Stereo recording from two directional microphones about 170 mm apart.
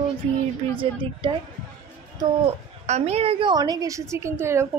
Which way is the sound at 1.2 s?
30° right (ahead or behind).